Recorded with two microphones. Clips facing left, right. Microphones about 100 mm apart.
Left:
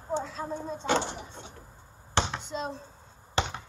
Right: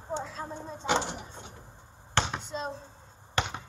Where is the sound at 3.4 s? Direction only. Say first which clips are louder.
Left 1 dB; 20° left (ahead or behind).